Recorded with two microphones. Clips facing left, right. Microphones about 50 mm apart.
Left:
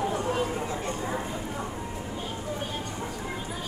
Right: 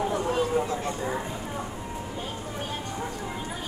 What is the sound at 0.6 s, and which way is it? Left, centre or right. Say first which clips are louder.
Speech: right 2 dB; centre.